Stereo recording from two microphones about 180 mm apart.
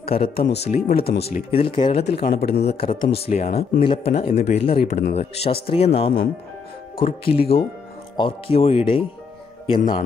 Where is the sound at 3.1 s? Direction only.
35° left (ahead or behind).